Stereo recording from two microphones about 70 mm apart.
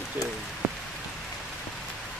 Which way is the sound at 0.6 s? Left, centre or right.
Right.